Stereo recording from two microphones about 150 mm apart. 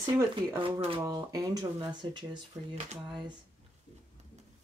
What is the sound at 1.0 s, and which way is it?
Speech, 25° right (ahead or behind).